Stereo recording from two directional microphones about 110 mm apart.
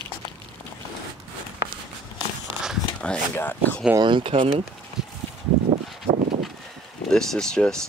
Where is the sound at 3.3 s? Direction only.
20° left (ahead or behind).